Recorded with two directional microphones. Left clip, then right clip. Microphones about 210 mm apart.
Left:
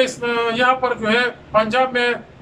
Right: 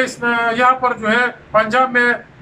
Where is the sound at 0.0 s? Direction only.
Centre (ahead or behind).